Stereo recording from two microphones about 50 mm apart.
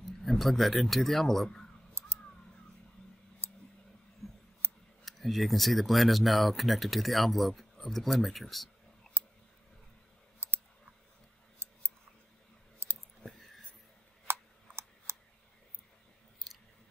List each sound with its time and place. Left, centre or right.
0.0 s speech: centre
2.0 s a sound: right
5.0 s speech: centre
10.4 s clicking: right
14.3 s a sound: right
15.1 s clicking: right